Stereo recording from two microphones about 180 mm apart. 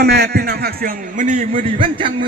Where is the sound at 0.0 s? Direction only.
60° right (ahead or behind); by 1.7 s 45° right (ahead or behind).